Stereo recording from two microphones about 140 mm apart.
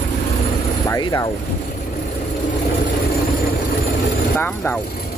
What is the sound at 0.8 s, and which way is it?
Speech, 25° left (ahead or behind).